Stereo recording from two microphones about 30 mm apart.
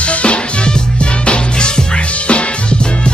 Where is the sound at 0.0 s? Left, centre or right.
Left.